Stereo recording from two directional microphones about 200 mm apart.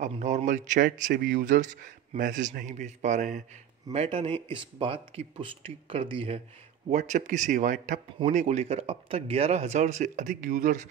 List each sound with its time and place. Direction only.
0.0 s speech: 35° right (ahead or behind)